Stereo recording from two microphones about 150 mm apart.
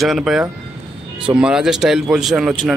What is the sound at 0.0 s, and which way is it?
Speech, centre (ahead or behind).